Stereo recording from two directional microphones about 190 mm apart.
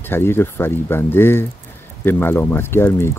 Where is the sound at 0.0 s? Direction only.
10° left (ahead or behind).